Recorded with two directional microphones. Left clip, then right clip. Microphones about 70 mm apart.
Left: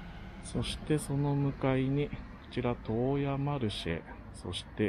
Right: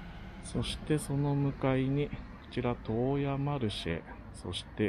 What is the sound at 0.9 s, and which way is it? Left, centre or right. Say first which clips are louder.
Speech: even; centre.